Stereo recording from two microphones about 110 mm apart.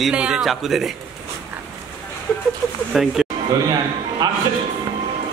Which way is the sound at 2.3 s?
5° left (ahead or behind).